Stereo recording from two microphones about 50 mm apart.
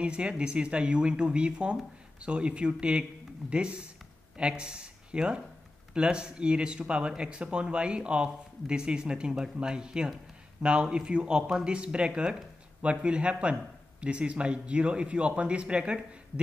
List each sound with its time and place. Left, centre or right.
0.0 s speech: right